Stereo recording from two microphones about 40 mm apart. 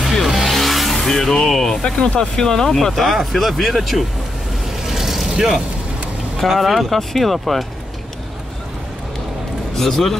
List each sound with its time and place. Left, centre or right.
0.0 s music: centre
0.9 s speech: centre
1.8 s speech: left; by 4.0 s centre
4.8 s vehicle: centre
6.3 s speech: centre
9.8 s speech: centre